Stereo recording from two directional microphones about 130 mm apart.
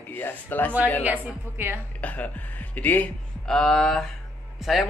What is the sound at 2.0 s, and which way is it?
Speech, 10° left (ahead or behind).